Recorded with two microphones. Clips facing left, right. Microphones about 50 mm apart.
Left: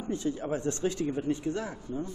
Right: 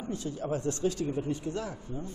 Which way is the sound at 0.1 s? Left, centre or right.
Left.